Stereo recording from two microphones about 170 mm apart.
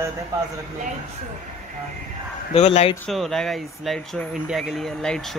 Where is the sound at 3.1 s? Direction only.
Centre (ahead or behind).